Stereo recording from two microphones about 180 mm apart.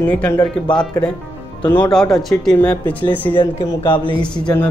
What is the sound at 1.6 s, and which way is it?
Speech, 20° left (ahead or behind).